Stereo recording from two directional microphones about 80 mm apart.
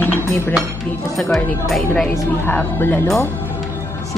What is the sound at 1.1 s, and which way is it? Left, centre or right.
Speech, centre.